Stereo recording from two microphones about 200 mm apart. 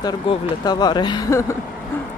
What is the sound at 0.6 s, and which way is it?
Speech, 20° left (ahead or behind).